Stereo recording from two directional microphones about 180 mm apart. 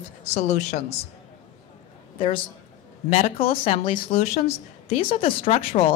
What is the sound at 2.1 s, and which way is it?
A man's voice, 30° left (ahead or behind).